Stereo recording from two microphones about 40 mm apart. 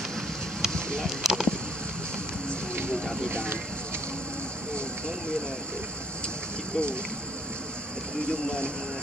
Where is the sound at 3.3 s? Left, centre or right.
Right.